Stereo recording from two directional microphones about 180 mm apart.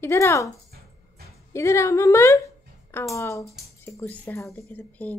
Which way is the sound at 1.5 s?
15° left (ahead or behind).